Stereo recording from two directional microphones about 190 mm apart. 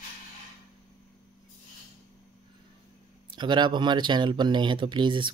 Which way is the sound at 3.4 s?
25° right (ahead or behind).